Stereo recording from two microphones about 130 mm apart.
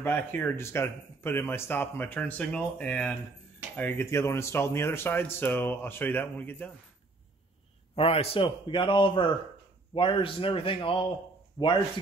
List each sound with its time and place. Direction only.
0.0 s speech: 15° left (ahead or behind)
7.9 s a man's voice: 50° left (ahead or behind)
11.6 s a man's voice: 30° left (ahead or behind)